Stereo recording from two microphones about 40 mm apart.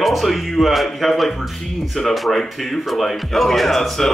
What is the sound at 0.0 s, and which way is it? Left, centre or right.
Speech, centre.